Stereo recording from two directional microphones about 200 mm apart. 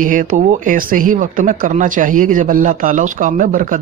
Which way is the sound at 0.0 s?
40° right (ahead or behind).